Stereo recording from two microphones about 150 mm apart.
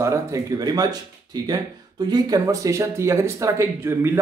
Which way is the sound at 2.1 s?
25° right (ahead or behind).